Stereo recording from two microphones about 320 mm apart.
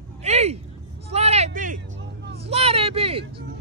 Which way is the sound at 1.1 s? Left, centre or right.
Centre.